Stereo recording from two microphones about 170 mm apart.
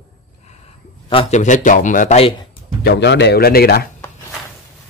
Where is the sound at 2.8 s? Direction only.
85° left; by 3.9 s 65° left (ahead or behind).